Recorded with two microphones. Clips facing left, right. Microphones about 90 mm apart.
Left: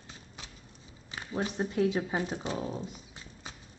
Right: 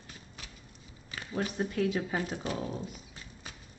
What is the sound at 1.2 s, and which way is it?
Speech, 20° left (ahead or behind).